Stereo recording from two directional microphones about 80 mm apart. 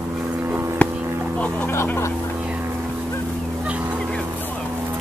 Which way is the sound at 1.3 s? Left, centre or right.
Centre.